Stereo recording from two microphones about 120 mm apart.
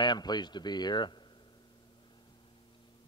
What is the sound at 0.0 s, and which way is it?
A man's voice, 35° left (ahead or behind).